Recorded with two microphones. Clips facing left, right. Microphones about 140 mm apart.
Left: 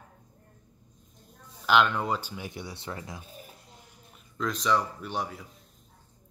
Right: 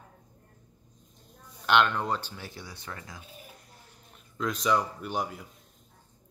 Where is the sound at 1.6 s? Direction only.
Centre (ahead or behind); by 3.2 s 25° left (ahead or behind).